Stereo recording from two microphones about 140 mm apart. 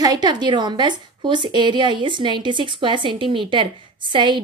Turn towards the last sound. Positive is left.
turn(degrees=-35)  # may be behind; listen again after turning